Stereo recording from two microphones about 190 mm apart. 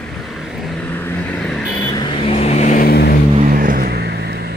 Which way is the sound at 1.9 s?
25° left (ahead or behind).